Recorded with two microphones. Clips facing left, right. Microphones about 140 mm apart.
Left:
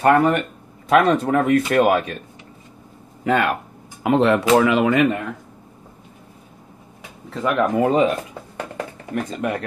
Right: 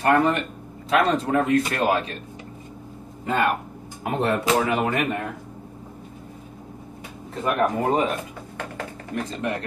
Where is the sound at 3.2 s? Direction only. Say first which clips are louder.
Left 3 dB; 75° left (ahead or behind).